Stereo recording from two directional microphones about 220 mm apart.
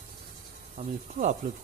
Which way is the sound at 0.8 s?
30° right (ahead or behind).